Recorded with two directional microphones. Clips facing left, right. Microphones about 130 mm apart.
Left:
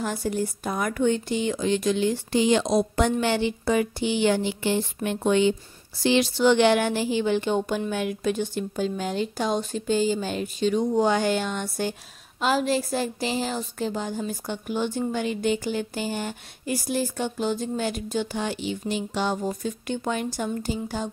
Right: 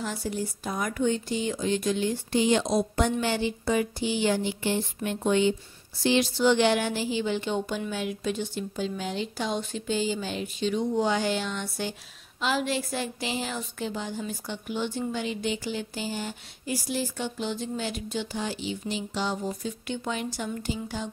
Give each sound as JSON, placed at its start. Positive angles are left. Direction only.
{"t": 0.0, "sound": "a woman's voice", "side_deg": 55}